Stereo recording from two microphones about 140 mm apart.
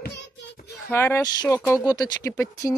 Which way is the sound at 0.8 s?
15° left (ahead or behind).